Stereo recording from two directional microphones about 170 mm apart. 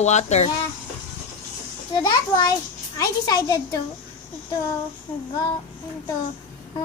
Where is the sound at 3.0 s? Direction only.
20° left (ahead or behind).